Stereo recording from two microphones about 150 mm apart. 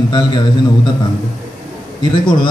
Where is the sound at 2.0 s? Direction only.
30° left (ahead or behind).